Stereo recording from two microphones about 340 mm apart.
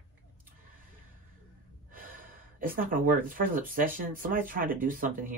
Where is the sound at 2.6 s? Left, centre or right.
Right.